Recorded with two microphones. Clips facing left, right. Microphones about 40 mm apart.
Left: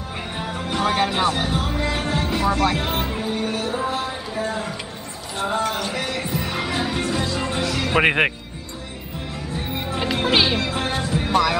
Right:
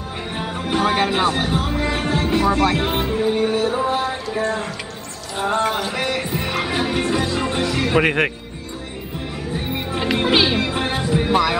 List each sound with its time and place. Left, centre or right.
0.7 s speech: centre
3.1 s music: centre
3.9 s a sound: centre
4.4 s speech: centre
5.8 s speech: centre
6.3 s music: right
8.0 s speech: centre
9.9 s speech: centre
10.6 s speech: centre